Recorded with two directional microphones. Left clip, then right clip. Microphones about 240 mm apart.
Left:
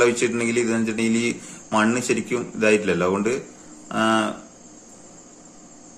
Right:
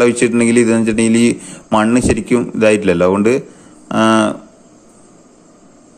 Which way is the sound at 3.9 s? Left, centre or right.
Right.